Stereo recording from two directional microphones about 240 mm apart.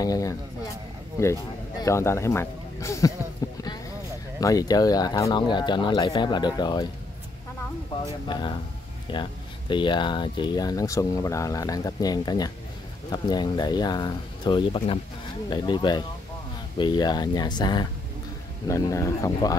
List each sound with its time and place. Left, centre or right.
0.0 s speech: centre
3.4 s a sound: centre
4.4 s speech: centre
8.0 s speech: centre